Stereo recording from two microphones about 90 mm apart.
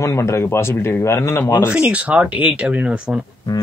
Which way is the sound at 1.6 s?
15° right (ahead or behind).